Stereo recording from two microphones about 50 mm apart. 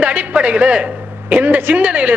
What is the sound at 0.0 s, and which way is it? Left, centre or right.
A man's voice, right.